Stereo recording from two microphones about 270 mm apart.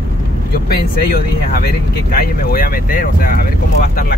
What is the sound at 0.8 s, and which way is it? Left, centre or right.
Speech, left.